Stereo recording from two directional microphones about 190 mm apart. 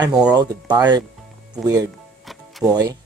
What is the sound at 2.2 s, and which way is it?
Music, centre (ahead or behind).